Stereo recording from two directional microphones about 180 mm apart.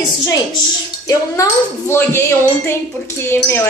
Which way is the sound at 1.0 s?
15° left (ahead or behind).